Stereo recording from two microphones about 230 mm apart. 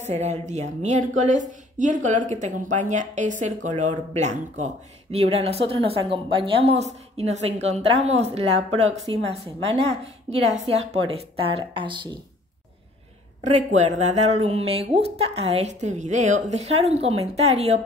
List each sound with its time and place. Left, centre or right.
0.1 s a woman's voice: right
9.7 s speech: right
10.3 s speech: right
13.7 s speech: right